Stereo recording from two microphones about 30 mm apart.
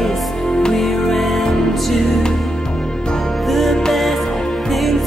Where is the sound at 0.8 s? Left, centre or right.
Centre.